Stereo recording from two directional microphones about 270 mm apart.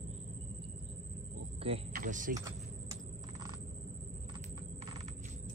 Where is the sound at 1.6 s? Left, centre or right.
Right.